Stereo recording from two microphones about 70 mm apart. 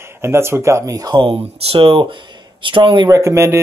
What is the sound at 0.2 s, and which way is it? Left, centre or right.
Speech, right.